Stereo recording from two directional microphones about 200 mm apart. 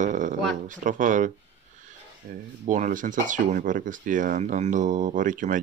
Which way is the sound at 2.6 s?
40° right (ahead or behind).